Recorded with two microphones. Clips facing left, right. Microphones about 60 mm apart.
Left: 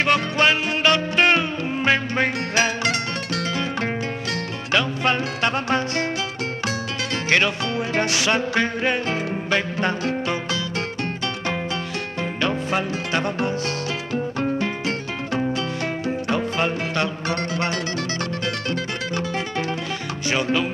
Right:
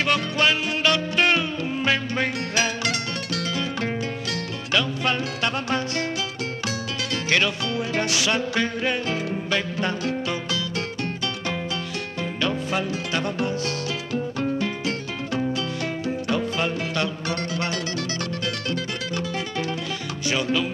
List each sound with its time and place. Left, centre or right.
0.0 s music: left
7.2 s music: left
12.4 s music: left
20.2 s music: left